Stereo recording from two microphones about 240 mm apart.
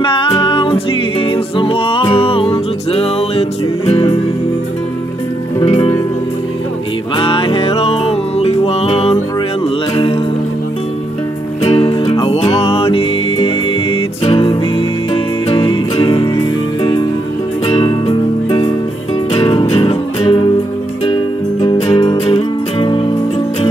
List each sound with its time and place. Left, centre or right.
0.0 s music: left
5.6 s music: centre
7.2 s music: left
11.6 s music: left
17.6 s music: left